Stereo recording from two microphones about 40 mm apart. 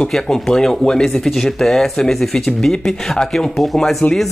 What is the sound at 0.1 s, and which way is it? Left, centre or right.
Speech, centre.